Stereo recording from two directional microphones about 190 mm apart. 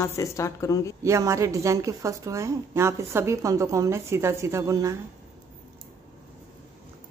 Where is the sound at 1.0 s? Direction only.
15° right (ahead or behind).